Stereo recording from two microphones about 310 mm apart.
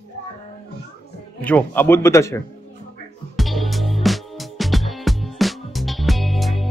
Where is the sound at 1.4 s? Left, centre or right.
Centre.